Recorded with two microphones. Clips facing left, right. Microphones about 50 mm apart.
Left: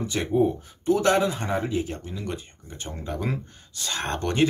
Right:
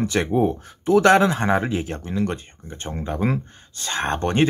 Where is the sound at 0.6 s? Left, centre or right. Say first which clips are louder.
Right 6 dB; right.